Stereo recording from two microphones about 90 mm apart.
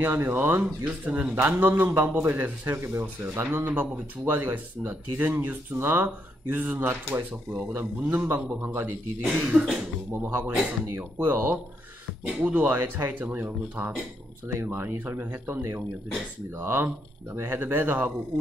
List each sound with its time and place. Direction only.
0.0 s speech: 25° right (ahead or behind); by 10.3 s 5° right (ahead or behind)
11.0 s speech: 25° right (ahead or behind)